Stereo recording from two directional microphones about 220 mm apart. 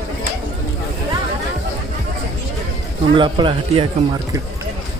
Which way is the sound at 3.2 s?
20° right (ahead or behind).